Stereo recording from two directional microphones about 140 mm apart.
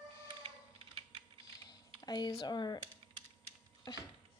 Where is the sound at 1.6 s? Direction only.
30° left (ahead or behind).